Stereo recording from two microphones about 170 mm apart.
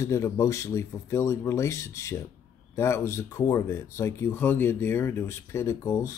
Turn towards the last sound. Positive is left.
turn(degrees=20)  # may be behind; listen again after turning